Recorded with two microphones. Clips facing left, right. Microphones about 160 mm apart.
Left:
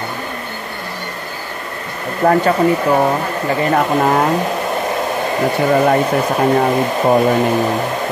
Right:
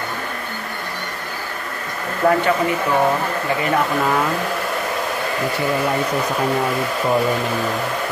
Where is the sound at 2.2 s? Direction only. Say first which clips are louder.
Left 3 dB; 35° left (ahead or behind).